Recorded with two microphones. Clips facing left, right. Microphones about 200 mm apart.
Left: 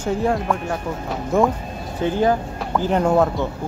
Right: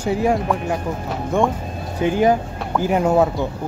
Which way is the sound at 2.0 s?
15° right (ahead or behind).